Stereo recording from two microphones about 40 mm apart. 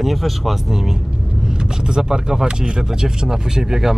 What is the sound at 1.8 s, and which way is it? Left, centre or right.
Speech, centre.